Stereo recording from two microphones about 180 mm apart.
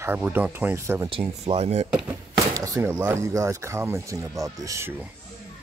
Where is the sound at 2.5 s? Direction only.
20° right (ahead or behind).